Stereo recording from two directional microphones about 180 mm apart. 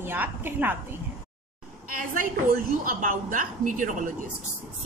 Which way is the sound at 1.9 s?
50° right (ahead or behind).